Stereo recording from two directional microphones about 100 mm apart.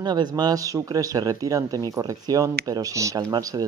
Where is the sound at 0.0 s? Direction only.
45° right (ahead or behind).